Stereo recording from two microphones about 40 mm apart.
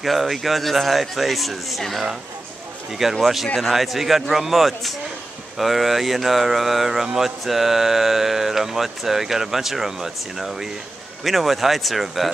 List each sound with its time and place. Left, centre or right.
0.0 s speech: centre
3.2 s speech: centre